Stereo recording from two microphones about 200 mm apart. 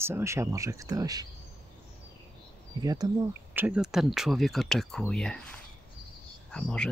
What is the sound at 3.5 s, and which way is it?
Speech, 10° right (ahead or behind).